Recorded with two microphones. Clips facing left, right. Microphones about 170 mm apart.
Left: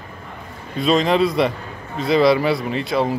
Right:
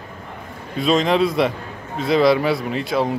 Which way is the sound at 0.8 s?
Centre (ahead or behind).